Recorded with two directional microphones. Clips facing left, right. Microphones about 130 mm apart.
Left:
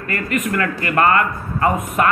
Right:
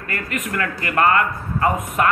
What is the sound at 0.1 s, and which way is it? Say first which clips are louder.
Speech: left 5 dB; 15° right (ahead or behind).